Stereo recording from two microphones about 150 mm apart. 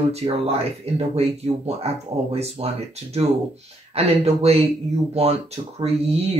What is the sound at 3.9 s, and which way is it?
Speech, 45° right (ahead or behind).